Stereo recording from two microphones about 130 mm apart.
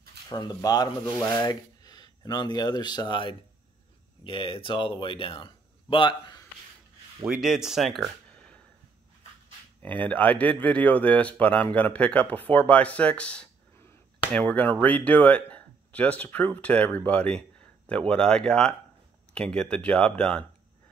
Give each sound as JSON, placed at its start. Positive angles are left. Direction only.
{"t": 0.3, "sound": "speech", "side_deg": 30}
{"t": 7.2, "sound": "speech", "side_deg": -5}
{"t": 9.8, "sound": "speech", "side_deg": 10}